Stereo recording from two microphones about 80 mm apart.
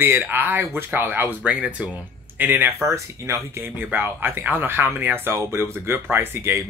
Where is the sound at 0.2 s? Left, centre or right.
Right.